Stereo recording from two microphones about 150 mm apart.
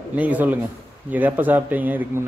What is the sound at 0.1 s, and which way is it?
Speech, 10° right (ahead or behind).